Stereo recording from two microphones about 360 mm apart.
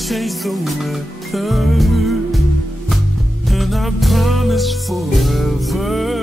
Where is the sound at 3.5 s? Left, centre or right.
Centre.